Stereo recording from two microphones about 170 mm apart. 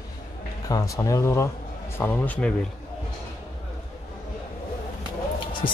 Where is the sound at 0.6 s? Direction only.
20° left (ahead or behind).